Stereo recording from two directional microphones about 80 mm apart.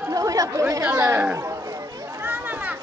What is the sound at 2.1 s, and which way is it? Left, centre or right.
Children playing, right.